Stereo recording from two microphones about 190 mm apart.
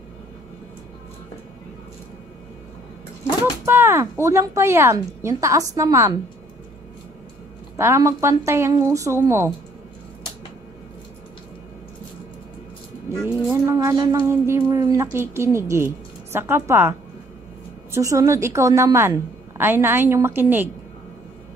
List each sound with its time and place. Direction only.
3.6 s a woman's voice: 15° right (ahead or behind)
7.7 s a woman's voice: 15° right (ahead or behind)
13.5 s a woman's voice: 15° right (ahead or behind)
17.9 s a woman's voice: 15° right (ahead or behind)